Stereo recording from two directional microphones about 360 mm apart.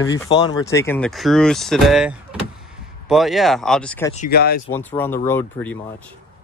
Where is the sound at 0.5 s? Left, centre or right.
Centre.